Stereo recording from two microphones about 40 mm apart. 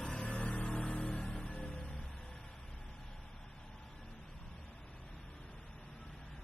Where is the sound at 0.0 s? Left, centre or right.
Left.